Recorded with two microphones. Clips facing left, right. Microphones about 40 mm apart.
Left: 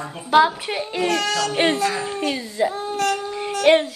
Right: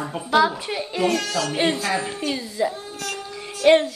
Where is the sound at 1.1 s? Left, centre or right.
Left.